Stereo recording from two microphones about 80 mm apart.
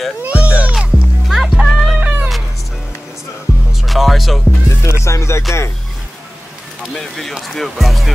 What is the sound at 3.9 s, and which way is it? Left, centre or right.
Music, centre.